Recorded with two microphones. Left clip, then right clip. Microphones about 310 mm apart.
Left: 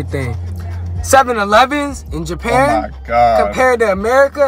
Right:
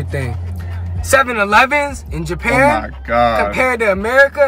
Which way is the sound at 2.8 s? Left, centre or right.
Centre.